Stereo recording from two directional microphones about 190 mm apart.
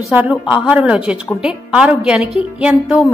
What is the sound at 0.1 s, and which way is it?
A woman's voice, 5° right (ahead or behind).